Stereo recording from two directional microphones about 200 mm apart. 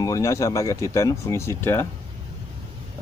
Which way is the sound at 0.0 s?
15° left (ahead or behind).